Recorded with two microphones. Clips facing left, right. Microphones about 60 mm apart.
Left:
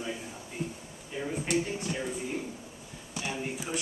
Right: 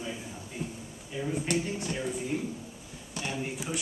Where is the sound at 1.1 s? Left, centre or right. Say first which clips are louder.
Even; centre.